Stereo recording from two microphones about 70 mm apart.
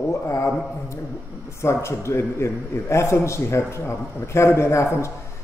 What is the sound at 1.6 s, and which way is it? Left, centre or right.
A man's voice, left.